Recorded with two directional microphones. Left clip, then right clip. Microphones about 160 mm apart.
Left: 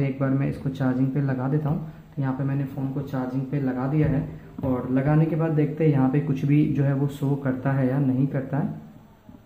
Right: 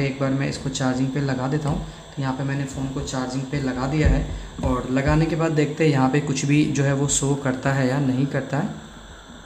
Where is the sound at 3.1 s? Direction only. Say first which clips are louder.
Right 2 dB; 15° right (ahead or behind).